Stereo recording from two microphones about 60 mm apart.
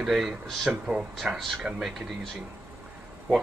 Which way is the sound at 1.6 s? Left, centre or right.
Centre.